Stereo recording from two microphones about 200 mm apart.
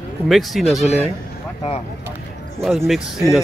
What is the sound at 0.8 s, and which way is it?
Speech, 30° left (ahead or behind).